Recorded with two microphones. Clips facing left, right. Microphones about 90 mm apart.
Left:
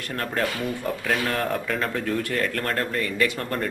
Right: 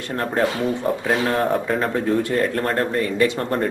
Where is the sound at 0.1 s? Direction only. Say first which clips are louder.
Right 6 dB; 25° right (ahead or behind).